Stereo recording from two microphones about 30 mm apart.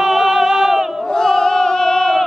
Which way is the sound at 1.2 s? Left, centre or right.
Left.